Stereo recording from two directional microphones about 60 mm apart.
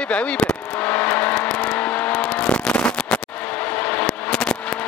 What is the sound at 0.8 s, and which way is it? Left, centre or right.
Vehicle, left.